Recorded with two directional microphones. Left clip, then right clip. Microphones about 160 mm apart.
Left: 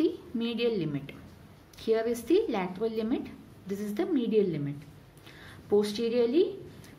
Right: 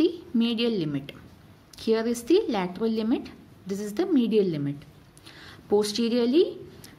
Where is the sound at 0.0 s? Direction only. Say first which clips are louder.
Right 5 dB; 35° right (ahead or behind).